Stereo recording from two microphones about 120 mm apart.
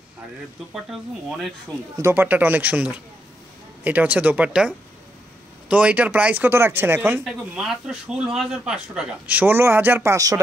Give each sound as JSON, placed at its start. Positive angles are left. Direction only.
{"t": 2.0, "sound": "speech", "side_deg": -20}
{"t": 7.2, "sound": "speech", "side_deg": -5}